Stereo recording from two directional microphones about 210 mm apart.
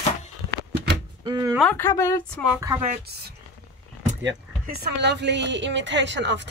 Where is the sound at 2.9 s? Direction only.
50° right (ahead or behind).